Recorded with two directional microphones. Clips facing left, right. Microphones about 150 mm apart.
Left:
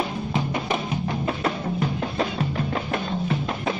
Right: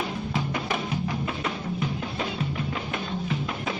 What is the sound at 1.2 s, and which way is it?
Music, 45° left (ahead or behind).